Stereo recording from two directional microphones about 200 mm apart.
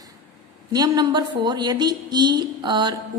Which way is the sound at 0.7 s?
20° right (ahead or behind).